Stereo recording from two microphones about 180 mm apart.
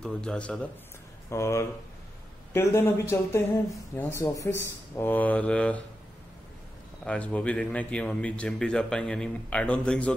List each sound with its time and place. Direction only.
0.0 s a man's voice: 5° left (ahead or behind)
7.1 s a man's voice: 5° left (ahead or behind)